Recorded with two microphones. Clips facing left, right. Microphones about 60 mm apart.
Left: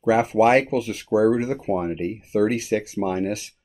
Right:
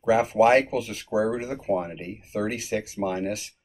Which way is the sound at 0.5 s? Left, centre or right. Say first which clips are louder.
Left 2 dB; left.